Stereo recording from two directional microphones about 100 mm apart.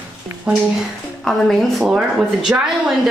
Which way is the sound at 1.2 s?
Centre (ahead or behind).